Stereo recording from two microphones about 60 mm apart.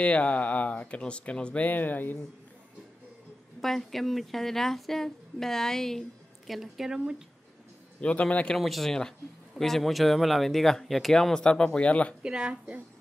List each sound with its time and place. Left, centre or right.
0.0 s speech: left
3.6 s a woman's voice: centre
8.0 s speech: left
8.5 s a woman's voice: centre; by 12.2 s left
12.2 s speech: centre